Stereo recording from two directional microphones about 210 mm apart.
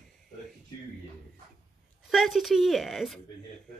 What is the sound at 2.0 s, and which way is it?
A woman's voice, centre (ahead or behind).